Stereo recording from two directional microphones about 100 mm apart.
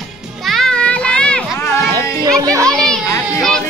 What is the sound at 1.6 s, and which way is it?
Children playing, 30° left (ahead or behind).